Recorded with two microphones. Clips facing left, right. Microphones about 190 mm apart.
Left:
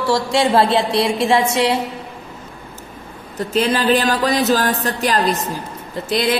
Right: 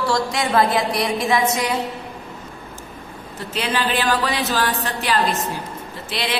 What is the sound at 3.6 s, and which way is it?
A woman's voice, 40° left (ahead or behind).